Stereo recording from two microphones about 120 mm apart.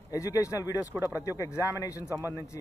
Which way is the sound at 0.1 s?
25° left (ahead or behind).